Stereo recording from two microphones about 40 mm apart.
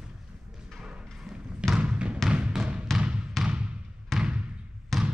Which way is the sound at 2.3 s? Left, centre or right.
Right.